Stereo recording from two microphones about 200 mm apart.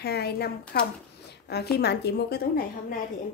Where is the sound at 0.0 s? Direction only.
55° left (ahead or behind).